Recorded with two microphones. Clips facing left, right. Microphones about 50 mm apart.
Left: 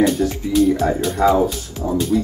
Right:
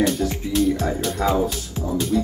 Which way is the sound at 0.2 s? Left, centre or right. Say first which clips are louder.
Left 4 dB; centre.